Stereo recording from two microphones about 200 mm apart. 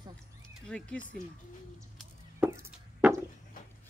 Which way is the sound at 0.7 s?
5° left (ahead or behind).